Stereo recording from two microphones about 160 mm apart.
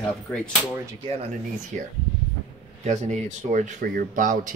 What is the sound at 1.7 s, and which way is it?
Speech, 50° right (ahead or behind).